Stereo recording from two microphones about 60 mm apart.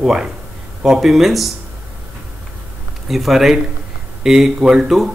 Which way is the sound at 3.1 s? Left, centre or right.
Centre.